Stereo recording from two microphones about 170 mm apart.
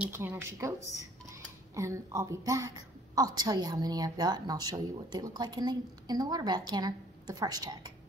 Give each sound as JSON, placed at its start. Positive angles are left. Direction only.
{"t": 0.0, "sound": "a woman's voice", "side_deg": -15}